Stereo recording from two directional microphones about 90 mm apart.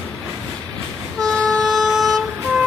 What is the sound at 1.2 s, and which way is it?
Vehicle, centre (ahead or behind).